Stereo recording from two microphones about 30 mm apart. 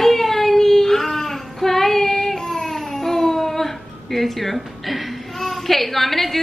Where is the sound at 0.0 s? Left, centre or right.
Centre.